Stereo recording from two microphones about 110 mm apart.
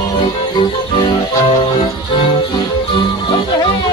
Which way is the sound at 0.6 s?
45° left (ahead or behind).